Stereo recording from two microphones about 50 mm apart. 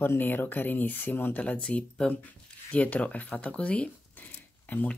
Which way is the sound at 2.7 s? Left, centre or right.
Left.